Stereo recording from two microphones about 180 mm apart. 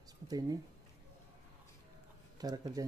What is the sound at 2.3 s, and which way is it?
Speech, 20° right (ahead or behind).